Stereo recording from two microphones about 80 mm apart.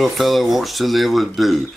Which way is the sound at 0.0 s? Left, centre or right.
Centre.